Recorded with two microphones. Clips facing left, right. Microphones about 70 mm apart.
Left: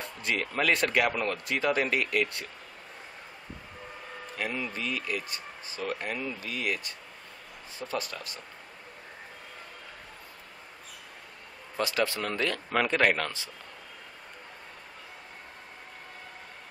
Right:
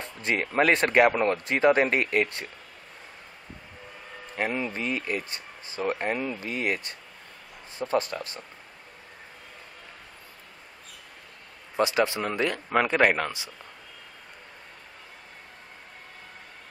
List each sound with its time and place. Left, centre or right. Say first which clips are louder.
0.2 s speech: right 5 dB; right
4.4 s speech: right 5 dB; right
11.7 s speech: right 5 dB; right